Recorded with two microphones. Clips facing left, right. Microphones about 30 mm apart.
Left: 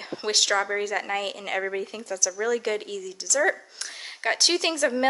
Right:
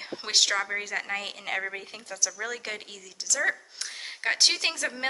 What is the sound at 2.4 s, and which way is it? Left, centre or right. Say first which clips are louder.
A woman's voice: left 8 dB; centre.